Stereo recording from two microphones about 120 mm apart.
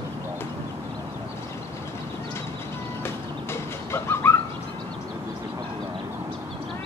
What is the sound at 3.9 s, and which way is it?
Bird, 20° left (ahead or behind).